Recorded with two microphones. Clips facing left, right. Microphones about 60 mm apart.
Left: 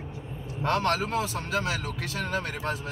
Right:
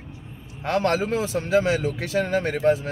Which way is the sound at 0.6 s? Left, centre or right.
Right.